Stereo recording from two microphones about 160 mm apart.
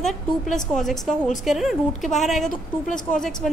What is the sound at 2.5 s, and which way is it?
Speech, 55° left (ahead or behind).